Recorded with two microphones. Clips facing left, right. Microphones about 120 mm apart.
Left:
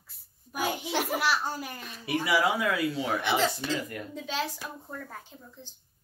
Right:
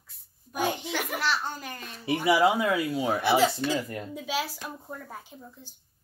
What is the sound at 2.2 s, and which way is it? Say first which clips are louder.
Speech: right 4 dB; 20° right (ahead or behind).